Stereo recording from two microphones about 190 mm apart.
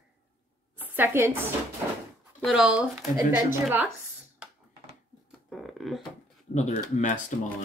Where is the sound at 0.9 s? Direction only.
15° right (ahead or behind).